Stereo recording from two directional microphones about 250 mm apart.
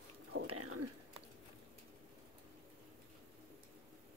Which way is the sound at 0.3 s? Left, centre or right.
Right.